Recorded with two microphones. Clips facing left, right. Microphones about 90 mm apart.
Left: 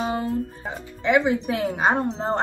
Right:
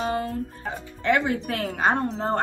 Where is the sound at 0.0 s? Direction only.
20° left (ahead or behind).